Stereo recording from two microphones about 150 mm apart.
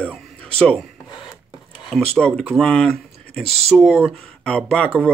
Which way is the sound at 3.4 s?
40° right (ahead or behind).